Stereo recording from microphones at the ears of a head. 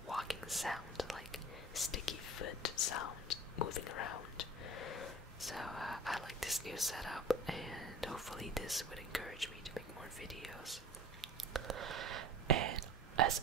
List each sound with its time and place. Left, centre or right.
0.1 s whispering: centre
1.9 s whispering: left
5.6 s whispering: centre
11.6 s whispering: right